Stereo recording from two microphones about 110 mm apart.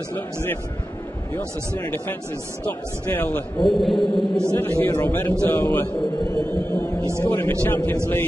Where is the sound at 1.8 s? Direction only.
15° left (ahead or behind).